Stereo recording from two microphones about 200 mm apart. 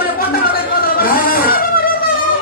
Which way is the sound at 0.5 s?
50° left (ahead or behind).